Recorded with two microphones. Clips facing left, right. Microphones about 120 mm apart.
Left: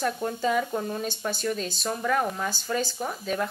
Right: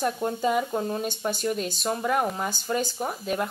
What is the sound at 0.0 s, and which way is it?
Speech, 20° right (ahead or behind).